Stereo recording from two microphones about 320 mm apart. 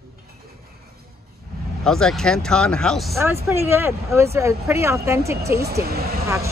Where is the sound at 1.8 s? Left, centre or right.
Centre.